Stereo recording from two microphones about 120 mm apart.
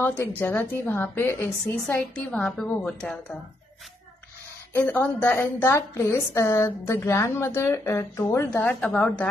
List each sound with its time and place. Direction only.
0.0 s a woman's voice: 15° left (ahead or behind)
4.7 s a woman's voice: 15° left (ahead or behind)